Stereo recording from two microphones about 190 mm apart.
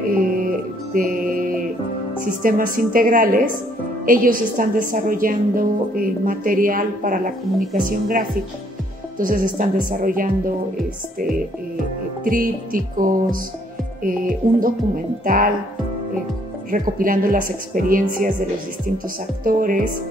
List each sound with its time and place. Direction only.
0.2 s music: 45° right (ahead or behind)
2.2 s a woman's voice: 45° right (ahead or behind)
12.3 s a woman's voice: 45° right (ahead or behind)
16.7 s a woman's voice: 45° right (ahead or behind)
19.4 s a woman's voice: 45° right (ahead or behind)